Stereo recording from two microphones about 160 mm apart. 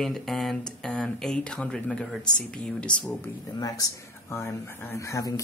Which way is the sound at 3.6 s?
20° left (ahead or behind).